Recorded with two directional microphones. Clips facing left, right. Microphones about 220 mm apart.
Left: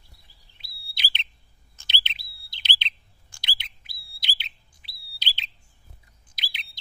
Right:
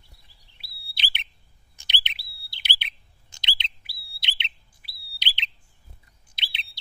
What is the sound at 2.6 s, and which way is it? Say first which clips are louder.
Chirp: left 2 dB; 15° right (ahead or behind).